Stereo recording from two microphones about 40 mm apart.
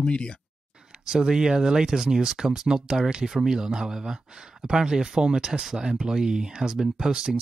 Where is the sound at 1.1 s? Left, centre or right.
Centre.